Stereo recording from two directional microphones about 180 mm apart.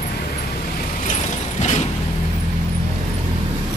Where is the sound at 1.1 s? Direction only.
40° left (ahead or behind).